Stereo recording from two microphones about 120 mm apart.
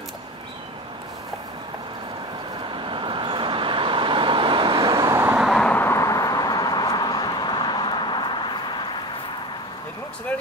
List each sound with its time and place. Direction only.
2.7 s vehicle: 45° right (ahead or behind)
4.9 s vehicle: 25° right (ahead or behind)
5.5 s a sound: 10° left (ahead or behind); by 8.9 s 40° left (ahead or behind)